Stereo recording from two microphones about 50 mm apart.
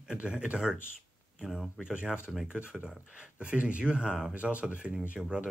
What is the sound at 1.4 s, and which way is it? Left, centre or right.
Speech, centre.